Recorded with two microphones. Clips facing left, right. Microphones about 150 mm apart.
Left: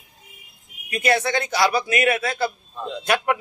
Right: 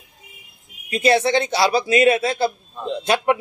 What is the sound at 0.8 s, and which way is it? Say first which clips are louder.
A man's voice: right 4 dB; 25° right (ahead or behind).